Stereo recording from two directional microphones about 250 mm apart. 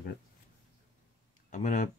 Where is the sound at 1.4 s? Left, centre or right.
Left.